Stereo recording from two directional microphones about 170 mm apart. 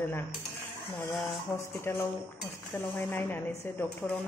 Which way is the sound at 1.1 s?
Centre (ahead or behind).